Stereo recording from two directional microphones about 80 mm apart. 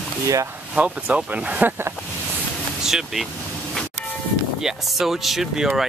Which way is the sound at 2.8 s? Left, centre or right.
Centre.